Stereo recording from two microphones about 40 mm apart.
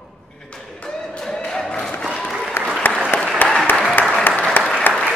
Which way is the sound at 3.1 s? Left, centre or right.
Left.